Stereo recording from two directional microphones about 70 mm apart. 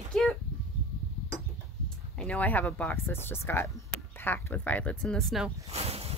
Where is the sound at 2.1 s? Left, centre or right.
Centre.